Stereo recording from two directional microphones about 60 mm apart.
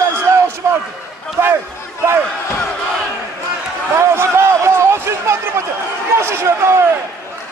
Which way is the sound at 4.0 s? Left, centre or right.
Right.